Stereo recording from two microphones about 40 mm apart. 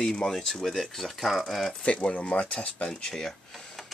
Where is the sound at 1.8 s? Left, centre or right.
Left.